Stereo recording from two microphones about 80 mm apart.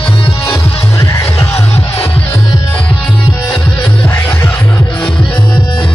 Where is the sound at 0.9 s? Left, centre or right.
Left.